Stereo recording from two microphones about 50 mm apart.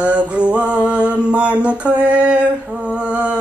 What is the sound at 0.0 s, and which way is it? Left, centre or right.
Mantra, right.